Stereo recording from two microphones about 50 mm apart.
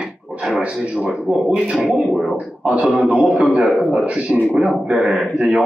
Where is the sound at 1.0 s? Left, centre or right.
Centre.